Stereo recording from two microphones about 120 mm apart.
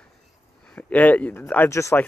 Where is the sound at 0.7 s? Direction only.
10° left (ahead or behind).